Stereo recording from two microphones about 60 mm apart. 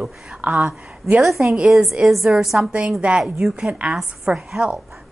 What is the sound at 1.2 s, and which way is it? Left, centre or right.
Speech, centre.